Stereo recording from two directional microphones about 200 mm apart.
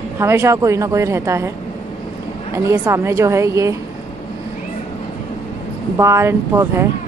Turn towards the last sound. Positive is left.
turn(degrees=-15)  # may be behind; listen again after turning